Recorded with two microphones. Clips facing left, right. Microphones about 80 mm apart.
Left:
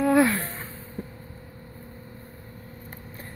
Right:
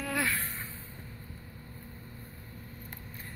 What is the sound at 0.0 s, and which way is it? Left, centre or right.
Music, left.